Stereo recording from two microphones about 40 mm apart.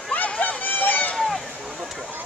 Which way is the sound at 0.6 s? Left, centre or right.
Left.